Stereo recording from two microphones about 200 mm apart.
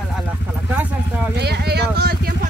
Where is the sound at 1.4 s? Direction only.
55° right (ahead or behind).